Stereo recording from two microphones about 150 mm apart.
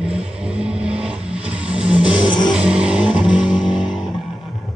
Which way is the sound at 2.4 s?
5° right (ahead or behind).